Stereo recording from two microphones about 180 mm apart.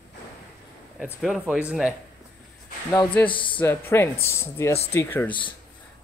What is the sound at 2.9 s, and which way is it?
Speech, 10° left (ahead or behind).